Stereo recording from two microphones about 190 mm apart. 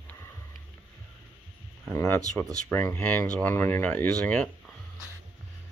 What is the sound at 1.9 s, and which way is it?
Speech, 10° left (ahead or behind).